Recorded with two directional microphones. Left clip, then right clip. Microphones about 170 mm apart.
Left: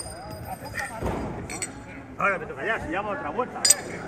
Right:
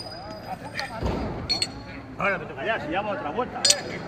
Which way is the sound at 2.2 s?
50° right (ahead or behind).